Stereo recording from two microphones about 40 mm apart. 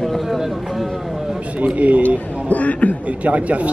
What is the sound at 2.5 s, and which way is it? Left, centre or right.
Speech, left.